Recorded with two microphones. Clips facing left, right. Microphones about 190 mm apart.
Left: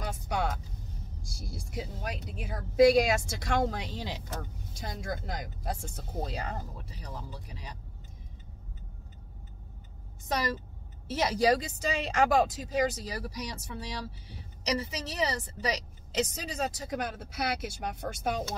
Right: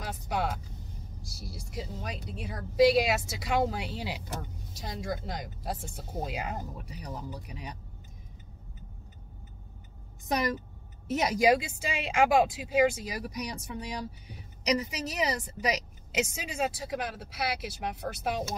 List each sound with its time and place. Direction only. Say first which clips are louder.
0.0 s a sound: even; centre (ahead or behind)
1.2 s speech: left 1 dB; centre (ahead or behind)
10.2 s a woman's voice: right 2 dB; 15° right (ahead or behind)